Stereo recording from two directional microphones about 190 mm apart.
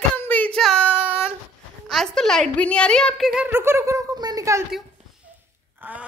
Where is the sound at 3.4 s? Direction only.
15° right (ahead or behind).